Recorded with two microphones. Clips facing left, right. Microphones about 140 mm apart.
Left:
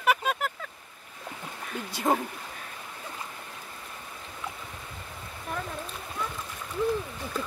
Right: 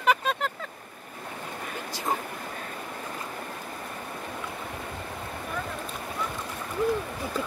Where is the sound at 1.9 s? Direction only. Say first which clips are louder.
Left 5 dB; 60° left (ahead or behind).